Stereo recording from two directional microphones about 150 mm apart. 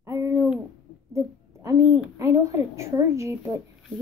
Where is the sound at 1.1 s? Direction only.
20° right (ahead or behind).